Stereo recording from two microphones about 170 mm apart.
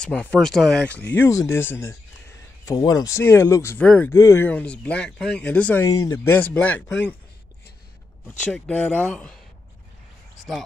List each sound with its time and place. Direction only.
0.0 s speech: 5° left (ahead or behind)
8.5 s speech: 5° left (ahead or behind)